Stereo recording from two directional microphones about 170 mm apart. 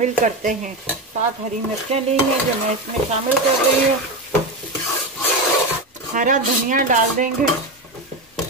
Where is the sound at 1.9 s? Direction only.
35° right (ahead or behind).